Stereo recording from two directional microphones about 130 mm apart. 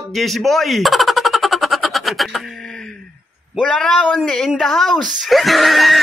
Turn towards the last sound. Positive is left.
turn(degrees=0)  # may be behind; listen again after turning